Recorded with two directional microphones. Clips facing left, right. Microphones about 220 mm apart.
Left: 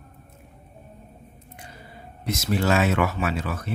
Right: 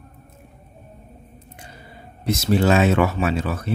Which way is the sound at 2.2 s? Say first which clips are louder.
Right 5 dB; 30° right (ahead or behind).